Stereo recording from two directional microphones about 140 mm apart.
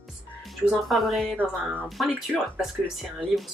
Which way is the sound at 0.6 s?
Centre (ahead or behind).